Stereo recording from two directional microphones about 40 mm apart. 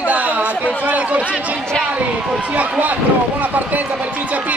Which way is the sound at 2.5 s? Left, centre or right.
Right.